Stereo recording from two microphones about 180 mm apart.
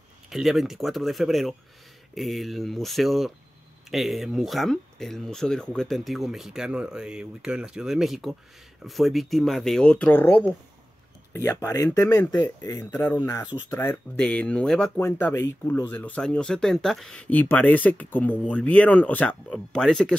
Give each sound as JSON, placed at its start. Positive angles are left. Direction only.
{"t": 0.3, "sound": "speech", "side_deg": 0}